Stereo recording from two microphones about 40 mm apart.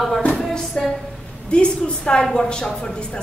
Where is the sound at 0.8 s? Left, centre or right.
Centre.